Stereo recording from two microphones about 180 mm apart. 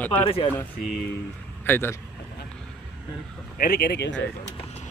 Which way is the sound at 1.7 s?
15° left (ahead or behind).